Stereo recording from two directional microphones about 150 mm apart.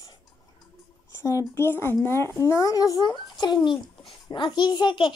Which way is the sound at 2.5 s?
20° left (ahead or behind).